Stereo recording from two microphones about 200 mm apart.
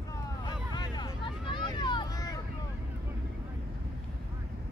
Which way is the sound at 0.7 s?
20° left (ahead or behind).